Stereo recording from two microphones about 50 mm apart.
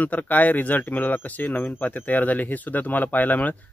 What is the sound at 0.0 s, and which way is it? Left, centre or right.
Speech, left.